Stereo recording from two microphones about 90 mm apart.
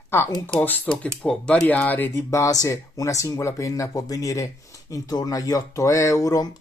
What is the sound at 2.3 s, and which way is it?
Speech, 40° left (ahead or behind).